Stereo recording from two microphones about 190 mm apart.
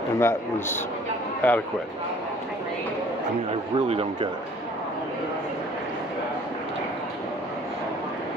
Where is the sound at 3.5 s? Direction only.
30° right (ahead or behind).